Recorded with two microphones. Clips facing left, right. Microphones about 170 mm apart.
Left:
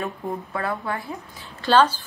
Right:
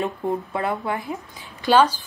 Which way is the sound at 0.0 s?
20° right (ahead or behind).